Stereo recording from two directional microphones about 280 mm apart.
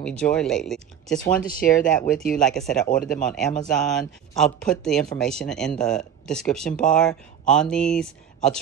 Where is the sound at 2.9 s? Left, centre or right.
Left.